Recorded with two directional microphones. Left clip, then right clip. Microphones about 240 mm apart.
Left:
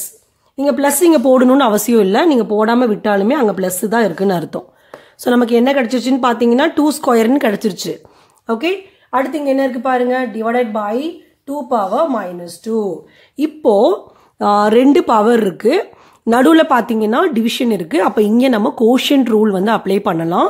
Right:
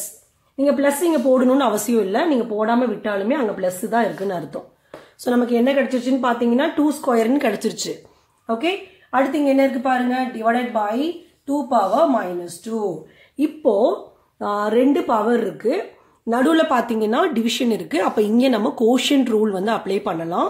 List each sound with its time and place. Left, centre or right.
0.6 s speech: left
8.5 s speech: left
13.4 s speech: left